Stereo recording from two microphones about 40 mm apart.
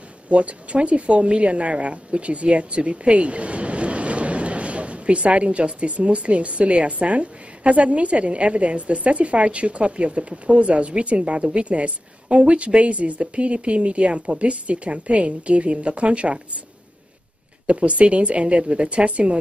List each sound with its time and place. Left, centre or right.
0.3 s speech: right
17.6 s speech: right